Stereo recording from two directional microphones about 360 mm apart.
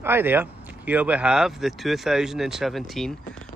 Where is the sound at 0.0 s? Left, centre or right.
Centre.